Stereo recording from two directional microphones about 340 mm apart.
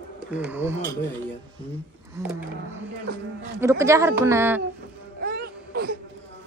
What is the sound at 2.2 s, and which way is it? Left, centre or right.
Speech, centre.